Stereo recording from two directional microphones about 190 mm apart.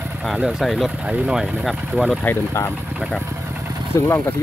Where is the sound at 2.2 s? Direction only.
15° left (ahead or behind).